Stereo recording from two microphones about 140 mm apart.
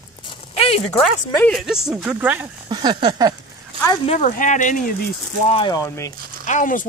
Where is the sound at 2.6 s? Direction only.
30° right (ahead or behind).